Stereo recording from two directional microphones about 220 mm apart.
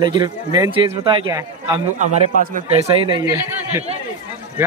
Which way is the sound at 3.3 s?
10° right (ahead or behind).